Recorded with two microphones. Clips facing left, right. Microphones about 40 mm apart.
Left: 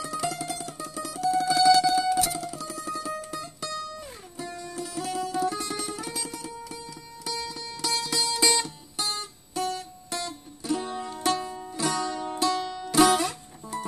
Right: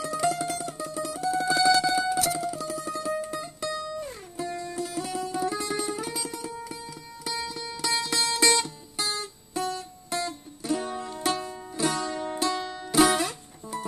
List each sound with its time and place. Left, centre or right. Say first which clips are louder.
0.2 s music: right 4 dB; centre
4.6 s music: right 3 dB; right
4.9 s music: left 4 dB; centre
8.9 s music: right 1 dB; centre